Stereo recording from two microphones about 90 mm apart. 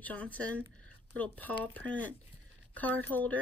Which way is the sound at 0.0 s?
15° left (ahead or behind).